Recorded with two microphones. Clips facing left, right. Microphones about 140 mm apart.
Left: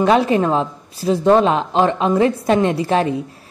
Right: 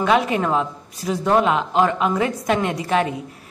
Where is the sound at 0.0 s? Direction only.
35° left (ahead or behind).